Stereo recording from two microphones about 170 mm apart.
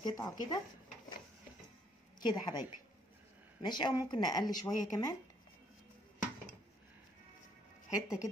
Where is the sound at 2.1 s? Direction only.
25° left (ahead or behind).